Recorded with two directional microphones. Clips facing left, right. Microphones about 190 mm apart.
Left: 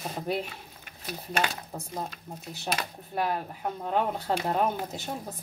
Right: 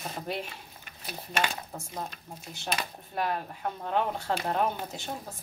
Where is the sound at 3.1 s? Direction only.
10° left (ahead or behind).